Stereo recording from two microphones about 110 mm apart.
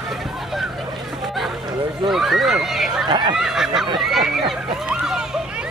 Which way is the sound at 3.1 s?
45° right (ahead or behind).